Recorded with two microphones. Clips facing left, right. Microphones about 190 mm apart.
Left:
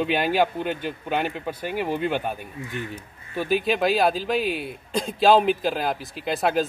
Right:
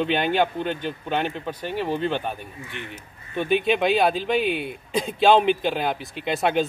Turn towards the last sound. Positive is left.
turn(degrees=0)  # may be behind; listen again after turning